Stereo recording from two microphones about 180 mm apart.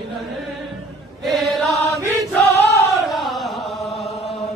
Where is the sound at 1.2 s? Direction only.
Centre (ahead or behind).